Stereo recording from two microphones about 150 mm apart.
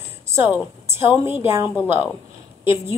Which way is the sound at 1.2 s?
15° right (ahead or behind).